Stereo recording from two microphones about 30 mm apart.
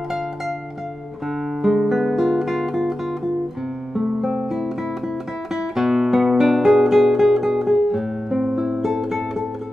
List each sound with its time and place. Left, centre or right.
1.6 s music: centre
5.8 s guitar: centre